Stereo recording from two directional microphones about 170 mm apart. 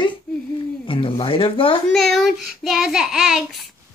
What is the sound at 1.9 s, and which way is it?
Child singing, centre (ahead or behind).